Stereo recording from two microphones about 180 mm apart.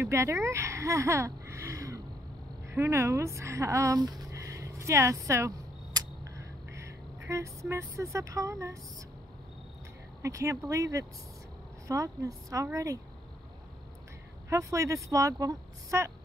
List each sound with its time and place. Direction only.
0.0 s speech: 15° right (ahead or behind)
5.9 s a sound: 15° right (ahead or behind)
10.2 s a woman's voice: 15° right (ahead or behind)
14.5 s a woman's voice: 15° right (ahead or behind)